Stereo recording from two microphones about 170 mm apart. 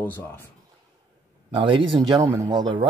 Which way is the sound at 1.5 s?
30° right (ahead or behind).